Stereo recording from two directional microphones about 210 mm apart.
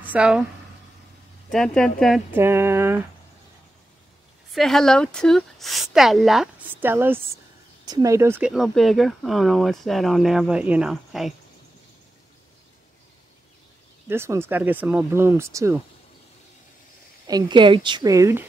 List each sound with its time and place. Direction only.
0.0 s speech: 5° right (ahead or behind)
1.5 s speech: 5° left (ahead or behind)
2.3 s speech: 10° right (ahead or behind)
4.5 s speech: centre (ahead or behind)
14.0 s speech: 10° right (ahead or behind)
17.3 s a woman's voice: 20° right (ahead or behind)